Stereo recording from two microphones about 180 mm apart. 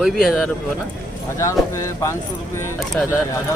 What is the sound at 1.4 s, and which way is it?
Speech, 15° left (ahead or behind).